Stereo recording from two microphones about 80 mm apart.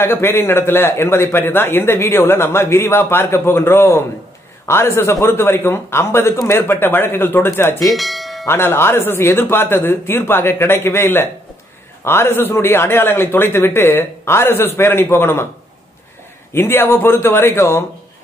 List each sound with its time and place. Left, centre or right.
0.0 s a man's voice: left
7.9 s bell: centre
8.5 s a man's voice: left
16.5 s a man's voice: left